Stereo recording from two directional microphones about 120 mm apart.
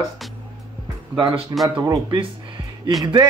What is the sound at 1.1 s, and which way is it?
Speech, 40° right (ahead or behind).